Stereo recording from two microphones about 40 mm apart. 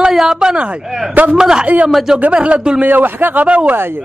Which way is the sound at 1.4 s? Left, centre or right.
Centre.